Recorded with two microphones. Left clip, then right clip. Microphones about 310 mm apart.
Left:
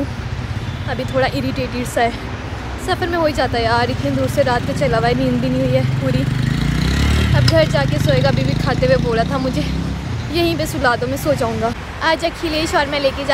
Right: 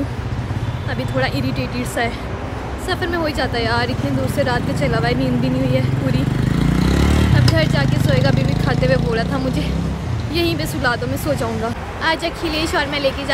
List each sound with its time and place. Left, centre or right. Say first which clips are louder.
1.1 s speech: left 3 dB; centre
6.4 s vehicle: right 2 dB; right
7.5 s speech: left 4 dB; centre